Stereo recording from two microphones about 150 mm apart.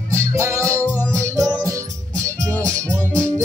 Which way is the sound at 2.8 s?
5° left (ahead or behind).